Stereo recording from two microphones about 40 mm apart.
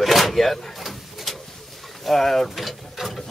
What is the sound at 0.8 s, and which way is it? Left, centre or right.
Pigeon, centre.